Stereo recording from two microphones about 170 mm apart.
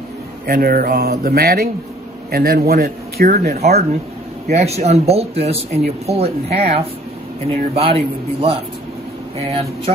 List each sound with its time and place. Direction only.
0.5 s speech: 60° right (ahead or behind)
4.5 s speech: 40° right (ahead or behind)